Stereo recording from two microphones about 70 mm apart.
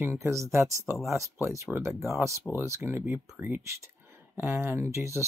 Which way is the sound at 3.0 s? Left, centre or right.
Right.